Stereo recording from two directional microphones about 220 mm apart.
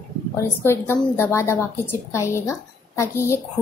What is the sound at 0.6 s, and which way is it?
Speech, 10° left (ahead or behind).